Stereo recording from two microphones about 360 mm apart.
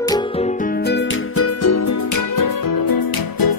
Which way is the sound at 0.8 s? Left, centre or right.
Left.